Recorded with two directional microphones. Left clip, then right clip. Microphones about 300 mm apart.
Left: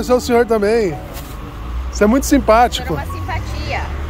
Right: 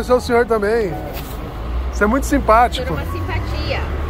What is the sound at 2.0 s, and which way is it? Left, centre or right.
Speech, left.